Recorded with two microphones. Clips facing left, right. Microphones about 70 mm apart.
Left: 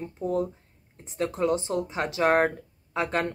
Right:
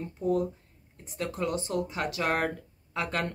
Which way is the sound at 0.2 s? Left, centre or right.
Left.